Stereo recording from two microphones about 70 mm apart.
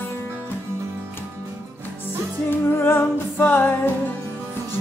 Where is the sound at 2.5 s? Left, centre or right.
Left.